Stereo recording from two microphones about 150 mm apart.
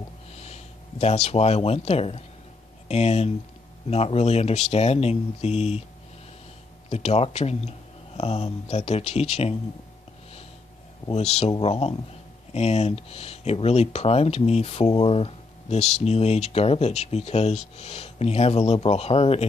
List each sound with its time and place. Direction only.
0.3 s speech: 45° left (ahead or behind)
6.9 s speech: 45° left (ahead or behind)
11.1 s speech: 45° left (ahead or behind)